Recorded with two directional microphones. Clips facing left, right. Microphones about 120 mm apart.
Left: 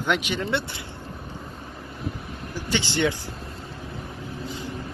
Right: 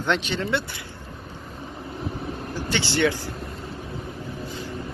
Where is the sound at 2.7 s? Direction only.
20° left (ahead or behind).